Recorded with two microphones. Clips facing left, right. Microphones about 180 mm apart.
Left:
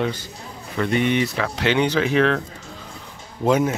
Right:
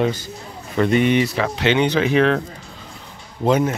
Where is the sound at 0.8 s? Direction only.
25° right (ahead or behind).